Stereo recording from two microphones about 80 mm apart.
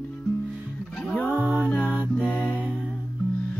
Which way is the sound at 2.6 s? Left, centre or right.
Centre.